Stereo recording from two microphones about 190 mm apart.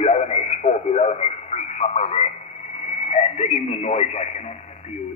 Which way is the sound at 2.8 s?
35° left (ahead or behind).